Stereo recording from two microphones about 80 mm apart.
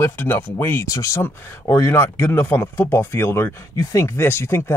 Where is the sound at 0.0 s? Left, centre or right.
Left.